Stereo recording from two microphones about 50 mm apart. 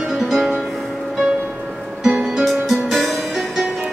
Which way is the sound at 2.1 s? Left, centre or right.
Right.